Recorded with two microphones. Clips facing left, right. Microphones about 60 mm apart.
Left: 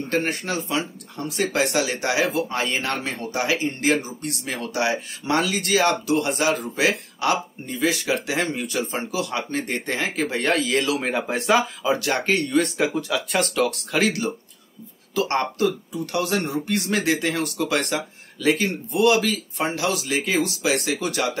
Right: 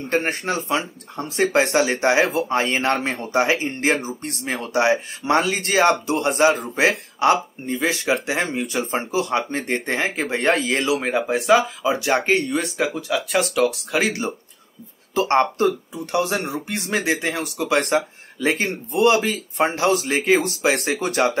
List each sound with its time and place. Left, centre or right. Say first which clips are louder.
0.1 s speech: right 3 dB; right
8.4 s speech: right 1 dB; centre
8.6 s speech: right 2 dB; right
11.0 s speech: right 3 dB; centre
11.8 s speech: right 2 dB; centre
12.7 s speech: even; centre
13.9 s speech: even; right
17.8 s speech: right 6 dB; right